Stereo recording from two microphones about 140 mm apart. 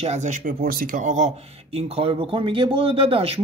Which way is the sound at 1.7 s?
45° right (ahead or behind).